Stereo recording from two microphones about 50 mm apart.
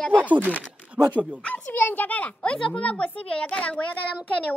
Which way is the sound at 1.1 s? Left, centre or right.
Right.